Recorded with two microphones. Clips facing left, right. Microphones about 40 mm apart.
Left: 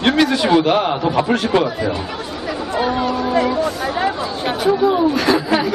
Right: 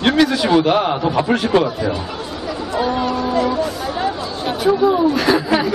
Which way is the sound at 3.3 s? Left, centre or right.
Centre.